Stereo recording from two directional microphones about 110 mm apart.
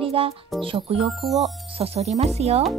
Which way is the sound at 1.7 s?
65° right (ahead or behind).